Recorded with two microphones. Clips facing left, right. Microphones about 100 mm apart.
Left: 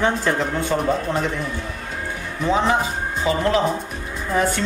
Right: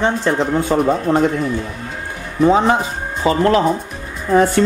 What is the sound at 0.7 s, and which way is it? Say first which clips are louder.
Speech: right 5 dB; 35° right (ahead or behind).